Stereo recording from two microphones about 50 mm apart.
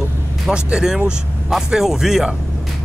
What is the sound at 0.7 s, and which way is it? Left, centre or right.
Speech, centre.